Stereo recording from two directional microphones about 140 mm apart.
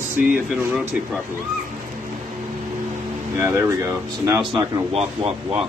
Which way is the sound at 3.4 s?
15° right (ahead or behind).